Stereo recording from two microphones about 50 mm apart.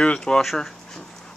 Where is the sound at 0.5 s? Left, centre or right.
Centre.